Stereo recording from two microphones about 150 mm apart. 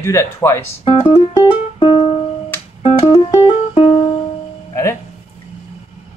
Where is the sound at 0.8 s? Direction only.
35° left (ahead or behind).